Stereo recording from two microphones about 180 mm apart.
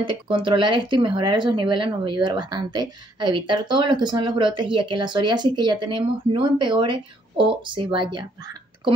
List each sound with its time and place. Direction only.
0.0 s speech: 30° right (ahead or behind)